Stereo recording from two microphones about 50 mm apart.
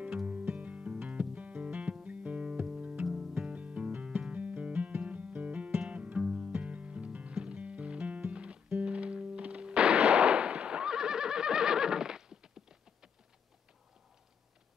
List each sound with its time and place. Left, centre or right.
0.3 s music: right
2.6 s music: centre
3.3 s music: right